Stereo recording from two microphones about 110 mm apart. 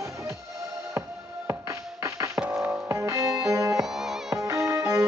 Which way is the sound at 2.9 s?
25° right (ahead or behind).